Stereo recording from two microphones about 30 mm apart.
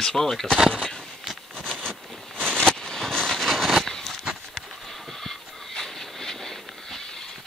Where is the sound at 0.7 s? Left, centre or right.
Left.